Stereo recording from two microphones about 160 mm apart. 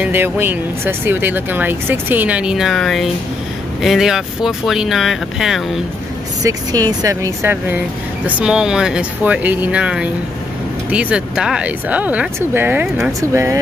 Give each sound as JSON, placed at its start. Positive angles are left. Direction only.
{"t": 0.0, "sound": "speech", "side_deg": -15}
{"t": 6.4, "sound": "speech", "side_deg": -25}
{"t": 8.4, "sound": "speech", "side_deg": -5}